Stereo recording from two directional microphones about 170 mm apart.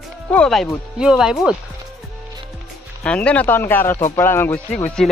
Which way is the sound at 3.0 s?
5° left (ahead or behind).